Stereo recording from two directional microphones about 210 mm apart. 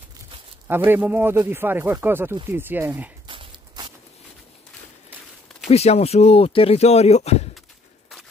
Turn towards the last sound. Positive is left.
turn(degrees=30)  # may be behind; listen again after turning